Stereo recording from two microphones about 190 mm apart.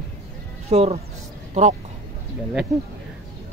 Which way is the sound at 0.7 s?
35° right (ahead or behind).